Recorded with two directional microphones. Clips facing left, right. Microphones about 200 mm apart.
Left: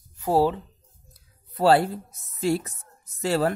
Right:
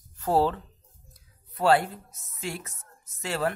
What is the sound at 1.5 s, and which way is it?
Speech, 35° left (ahead or behind).